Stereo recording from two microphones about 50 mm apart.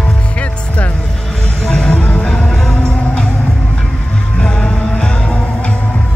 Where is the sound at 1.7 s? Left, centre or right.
Left.